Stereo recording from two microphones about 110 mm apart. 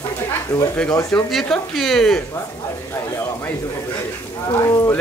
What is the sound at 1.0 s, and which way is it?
Speech, 5° left (ahead or behind).